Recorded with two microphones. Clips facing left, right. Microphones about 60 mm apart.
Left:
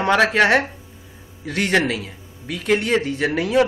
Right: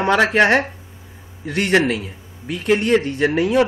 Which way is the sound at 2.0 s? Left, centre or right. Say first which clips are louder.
Right 2 dB; left.